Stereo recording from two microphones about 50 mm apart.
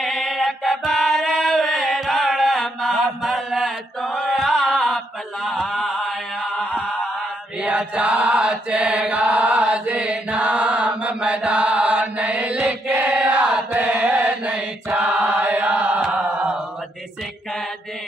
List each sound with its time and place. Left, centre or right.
0.0 s music: centre
1.3 s singing: centre
2.0 s mantra: centre
6.4 s mantra: centre
9.1 s chant: right
12.8 s mantra: right
13.1 s chant: right
13.7 s mantra: right
15.2 s chant: right